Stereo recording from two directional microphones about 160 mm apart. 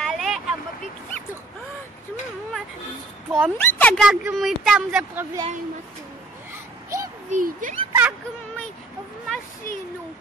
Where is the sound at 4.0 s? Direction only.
5° right (ahead or behind).